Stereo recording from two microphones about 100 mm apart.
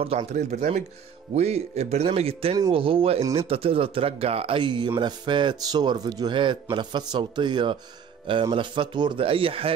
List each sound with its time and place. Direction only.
0.0 s speech: 80° right
2.7 s a man's voice: 65° right (ahead or behind)